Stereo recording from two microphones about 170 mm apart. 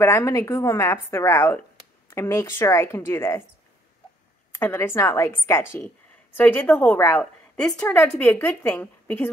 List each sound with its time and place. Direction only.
0.0 s a woman's voice: 15° left (ahead or behind)
4.5 s a woman's voice: 15° left (ahead or behind)